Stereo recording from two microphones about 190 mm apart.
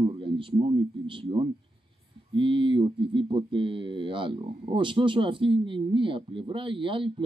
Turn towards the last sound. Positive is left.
turn(degrees=-25)  # may be behind; listen again after turning